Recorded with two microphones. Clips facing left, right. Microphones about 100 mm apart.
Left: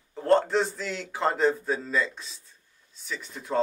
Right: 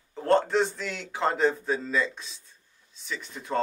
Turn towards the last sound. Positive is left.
turn(degrees=0)  # may be behind; listen again after turning